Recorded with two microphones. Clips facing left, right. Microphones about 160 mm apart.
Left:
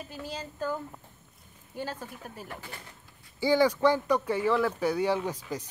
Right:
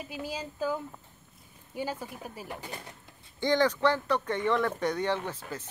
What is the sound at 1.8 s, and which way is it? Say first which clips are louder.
Speech: right 2 dB; 10° right (ahead or behind).